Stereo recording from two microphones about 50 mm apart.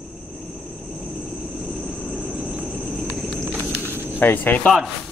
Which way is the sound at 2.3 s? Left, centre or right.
Right.